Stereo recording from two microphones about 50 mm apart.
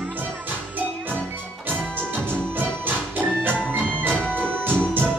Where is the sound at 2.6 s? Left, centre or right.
Right.